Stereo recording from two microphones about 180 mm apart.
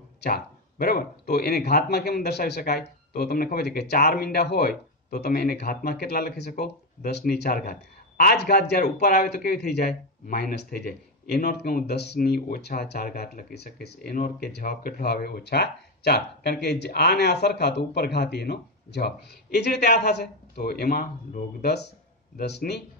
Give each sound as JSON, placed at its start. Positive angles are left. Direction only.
{"t": 0.2, "sound": "speech", "side_deg": 60}